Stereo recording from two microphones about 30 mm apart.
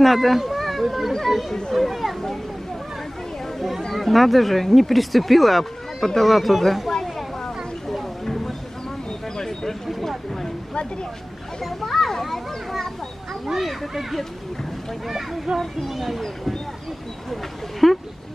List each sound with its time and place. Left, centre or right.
0.0 s speech: centre
0.6 s a sound: centre
1.7 s speech: centre
3.9 s speech: centre
7.9 s a sound: centre
9.4 s a sound: centre
9.8 s speech: centre
11.6 s a child's voice: centre
12.1 s children playing: centre
13.5 s a child's voice: centre
15.0 s a child's voice: centre
17.3 s speech: centre